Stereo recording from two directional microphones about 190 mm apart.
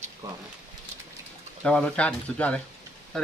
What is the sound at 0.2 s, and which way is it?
Speech, 15° right (ahead or behind).